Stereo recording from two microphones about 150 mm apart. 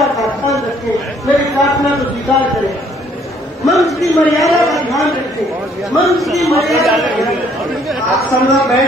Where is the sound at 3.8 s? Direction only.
Centre (ahead or behind).